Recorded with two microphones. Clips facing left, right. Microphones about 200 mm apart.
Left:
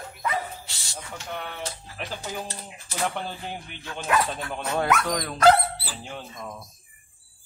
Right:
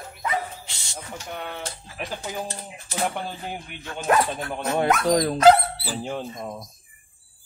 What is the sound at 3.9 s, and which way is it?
Speech, 40° right (ahead or behind).